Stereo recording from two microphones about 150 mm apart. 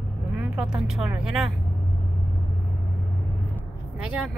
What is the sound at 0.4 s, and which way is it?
Speech, 5° right (ahead or behind).